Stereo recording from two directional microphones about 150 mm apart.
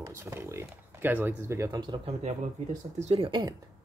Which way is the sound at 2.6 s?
50° right (ahead or behind).